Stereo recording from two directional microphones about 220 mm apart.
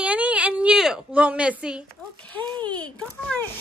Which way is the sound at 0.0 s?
5° right (ahead or behind).